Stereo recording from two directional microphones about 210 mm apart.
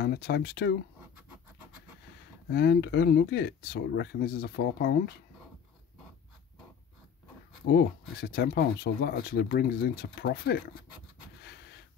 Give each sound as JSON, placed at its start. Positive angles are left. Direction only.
{"t": 0.0, "sound": "speech", "side_deg": 50}
{"t": 2.5, "sound": "speech", "side_deg": 50}
{"t": 7.6, "sound": "speech", "side_deg": 50}